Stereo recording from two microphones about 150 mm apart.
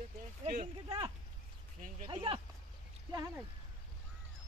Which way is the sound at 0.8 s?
35° right (ahead or behind).